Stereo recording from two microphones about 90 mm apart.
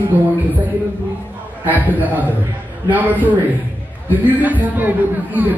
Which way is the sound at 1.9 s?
20° right (ahead or behind).